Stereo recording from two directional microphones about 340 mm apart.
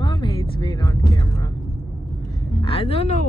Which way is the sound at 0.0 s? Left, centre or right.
Centre.